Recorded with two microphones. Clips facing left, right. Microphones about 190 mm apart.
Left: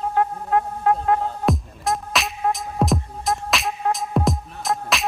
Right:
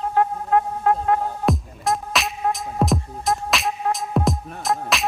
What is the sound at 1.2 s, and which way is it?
Music, centre (ahead or behind).